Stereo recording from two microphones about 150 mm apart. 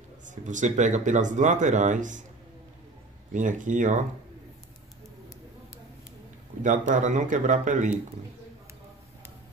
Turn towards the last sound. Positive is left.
turn(degrees=-55)  # may be behind; listen again after turning